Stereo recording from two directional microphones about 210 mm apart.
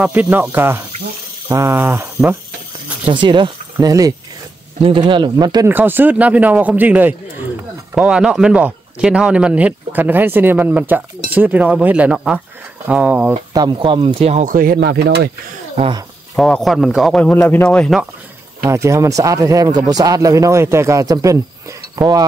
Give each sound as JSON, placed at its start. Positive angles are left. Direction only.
{"t": 0.0, "sound": "a man's voice", "side_deg": -10}
{"t": 3.1, "sound": "a man's voice", "side_deg": -20}
{"t": 13.5, "sound": "speech", "side_deg": -20}
{"t": 14.8, "sound": "speech", "side_deg": -50}
{"t": 15.7, "sound": "speech", "side_deg": -25}
{"t": 16.3, "sound": "speech", "side_deg": 0}
{"t": 18.7, "sound": "a man's voice", "side_deg": -15}